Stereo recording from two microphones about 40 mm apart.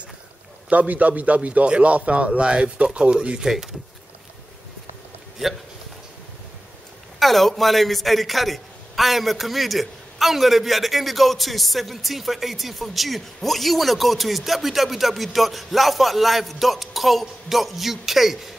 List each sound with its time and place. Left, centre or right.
0.7 s a man's voice: right
3.4 s speech: centre
7.2 s a man's voice: centre